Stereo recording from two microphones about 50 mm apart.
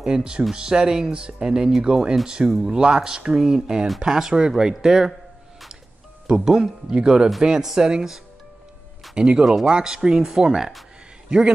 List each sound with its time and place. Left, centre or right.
0.0 s speech: centre
6.2 s a man's voice: centre